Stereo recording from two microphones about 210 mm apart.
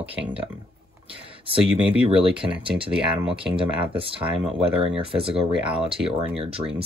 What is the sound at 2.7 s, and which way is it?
Speech, 25° right (ahead or behind).